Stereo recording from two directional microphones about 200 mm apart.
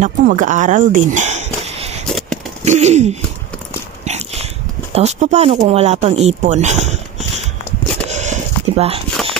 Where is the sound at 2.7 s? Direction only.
35° right (ahead or behind).